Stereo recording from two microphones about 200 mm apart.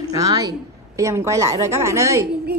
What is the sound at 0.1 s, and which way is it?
A woman's voice, 20° right (ahead or behind).